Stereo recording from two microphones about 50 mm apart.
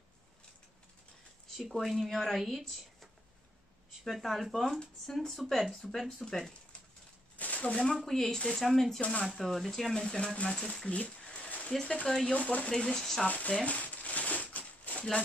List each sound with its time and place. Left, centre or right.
1.6 s speech: centre
7.3 s a sound: left
7.6 s speech: centre
9.9 s speech: centre
11.4 s a sound: left
11.8 s speech: centre
12.7 s speech: centre
13.3 s speech: left
13.7 s a sound: left